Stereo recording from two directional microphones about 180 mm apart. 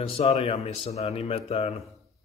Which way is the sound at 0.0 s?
35° left (ahead or behind).